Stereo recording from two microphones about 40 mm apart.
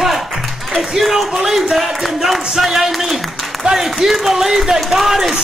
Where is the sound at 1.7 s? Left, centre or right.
Centre.